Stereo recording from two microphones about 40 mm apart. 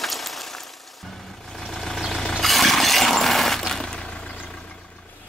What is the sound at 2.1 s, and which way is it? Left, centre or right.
Vehicle, centre.